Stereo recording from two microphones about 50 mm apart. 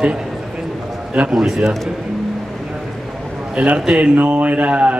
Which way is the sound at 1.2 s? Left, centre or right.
Centre.